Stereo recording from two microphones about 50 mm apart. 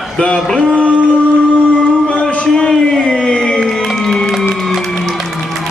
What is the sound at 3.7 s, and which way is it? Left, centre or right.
Music, centre.